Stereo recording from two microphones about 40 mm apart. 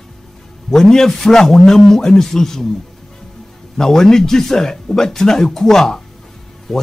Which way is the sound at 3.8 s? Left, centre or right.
Centre.